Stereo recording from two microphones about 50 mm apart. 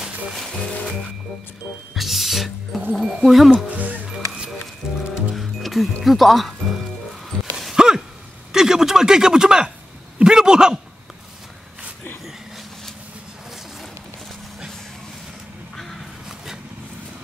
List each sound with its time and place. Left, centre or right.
0.3 s music: centre
2.0 s speech: centre
3.5 s speech: right
4.1 s music: centre
6.0 s speech: centre
7.7 s a sound: centre
8.5 s speech: centre
10.1 s a sound: centre
15.7 s crow: centre